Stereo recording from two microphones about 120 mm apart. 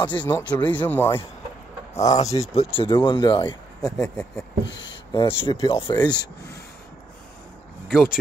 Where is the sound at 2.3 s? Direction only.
60° left (ahead or behind); by 3.5 s 40° left (ahead or behind).